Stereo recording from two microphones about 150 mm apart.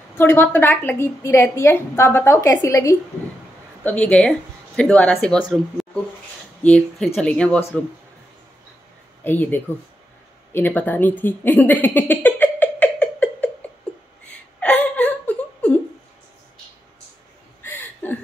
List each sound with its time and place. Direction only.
0.2 s a woman's voice: 15° left (ahead or behind)
3.8 s speech: 10° left (ahead or behind)
6.6 s a woman's voice: 5° left (ahead or behind)
9.2 s a woman's voice: 15° left (ahead or behind)
14.3 s whimper: 10° left (ahead or behind)
17.6 s a sound: 15° left (ahead or behind)